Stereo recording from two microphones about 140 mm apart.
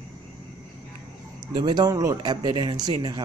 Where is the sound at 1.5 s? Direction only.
30° right (ahead or behind).